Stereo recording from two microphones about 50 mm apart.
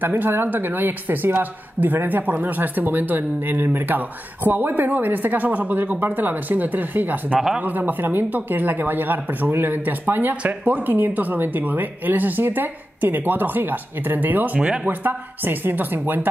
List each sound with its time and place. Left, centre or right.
0.0 s a woman's voice: right
14.9 s a woman's voice: right